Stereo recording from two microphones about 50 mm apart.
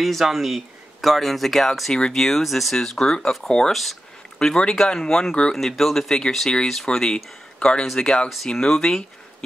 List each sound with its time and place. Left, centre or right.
0.0 s speech: centre
5.6 s speech: centre; by 7.8 s left
7.8 s speech: centre